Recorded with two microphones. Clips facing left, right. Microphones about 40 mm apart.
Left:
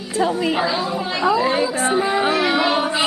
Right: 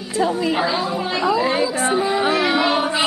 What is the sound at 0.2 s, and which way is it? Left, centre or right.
Speech, left.